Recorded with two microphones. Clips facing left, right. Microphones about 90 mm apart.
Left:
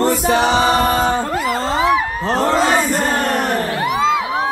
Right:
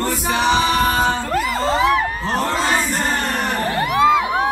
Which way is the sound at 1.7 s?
5° left (ahead or behind).